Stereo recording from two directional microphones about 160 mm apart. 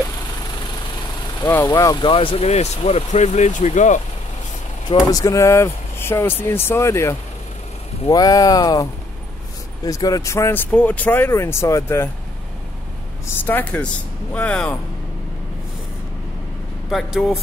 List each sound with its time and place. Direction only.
1.4 s speech: 15° left (ahead or behind)
2.0 s speech: 35° left (ahead or behind)
5.0 s speech: 20° left (ahead or behind)
9.8 s speech: 20° left (ahead or behind)
13.4 s speech: 10° left (ahead or behind)
16.9 s speech: 5° right (ahead or behind)